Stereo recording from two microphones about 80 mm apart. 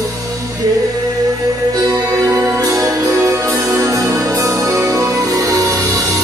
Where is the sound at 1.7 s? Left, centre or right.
Right.